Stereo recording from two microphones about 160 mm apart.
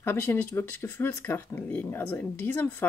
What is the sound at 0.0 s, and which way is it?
Speech, 15° left (ahead or behind).